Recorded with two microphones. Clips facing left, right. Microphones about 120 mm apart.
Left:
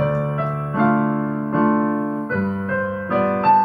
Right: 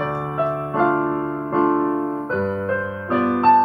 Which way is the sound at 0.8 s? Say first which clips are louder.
Left 2 dB; 30° right (ahead or behind).